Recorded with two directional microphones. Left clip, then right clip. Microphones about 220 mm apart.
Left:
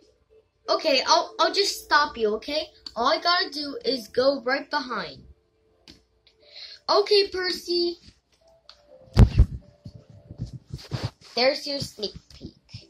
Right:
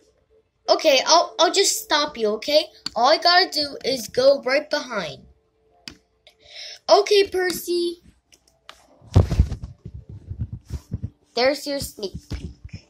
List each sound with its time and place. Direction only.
0.7 s a woman's voice: 20° right (ahead or behind)
6.2 s music: 10° right (ahead or behind)
7.6 s a woman's voice: 20° right (ahead or behind)
11.3 s speech: 10° right (ahead or behind)